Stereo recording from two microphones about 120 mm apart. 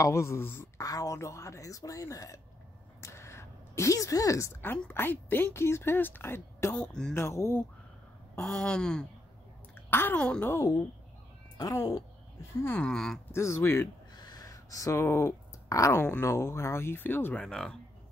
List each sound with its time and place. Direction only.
0.0 s speech: 25° left (ahead or behind)
3.0 s a sound: 25° left (ahead or behind)
4.6 s a woman's voice: 15° left (ahead or behind)
6.7 s a woman's voice: 5° left (ahead or behind)
7.2 s speech: 20° left (ahead or behind)
8.4 s a woman's voice: 5° left (ahead or behind)
9.8 s a woman's voice: 15° left (ahead or behind)
12.8 s speech: 5° left (ahead or behind)
13.3 s speech: 20° left (ahead or behind)
14.1 s speech: 35° left (ahead or behind); by 17.7 s 5° left (ahead or behind)